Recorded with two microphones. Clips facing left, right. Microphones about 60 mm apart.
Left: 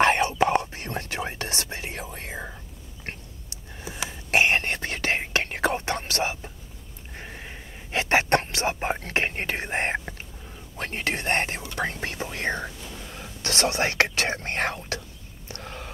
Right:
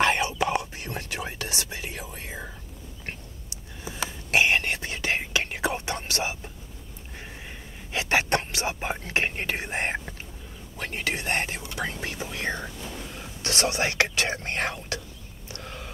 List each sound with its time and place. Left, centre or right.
0.0 s whispering: left
3.8 s whispering: left
7.9 s a sound: left
9.0 s speech: left
12.6 s whispering: centre
13.4 s speech: left
15.4 s a sound: left